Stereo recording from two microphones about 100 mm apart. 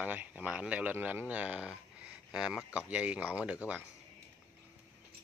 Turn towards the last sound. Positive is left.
turn(degrees=-15)  # may be behind; listen again after turning